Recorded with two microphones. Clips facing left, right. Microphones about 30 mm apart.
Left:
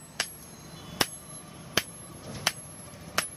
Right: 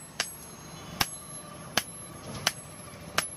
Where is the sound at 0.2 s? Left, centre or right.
Centre.